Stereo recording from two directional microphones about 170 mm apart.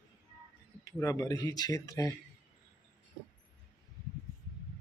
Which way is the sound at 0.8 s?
20° left (ahead or behind).